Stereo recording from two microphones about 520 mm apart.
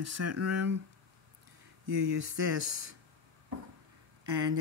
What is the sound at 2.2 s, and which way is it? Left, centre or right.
Speech, right.